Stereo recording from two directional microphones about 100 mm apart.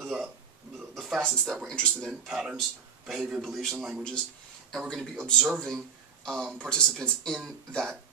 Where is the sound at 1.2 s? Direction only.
5° left (ahead or behind).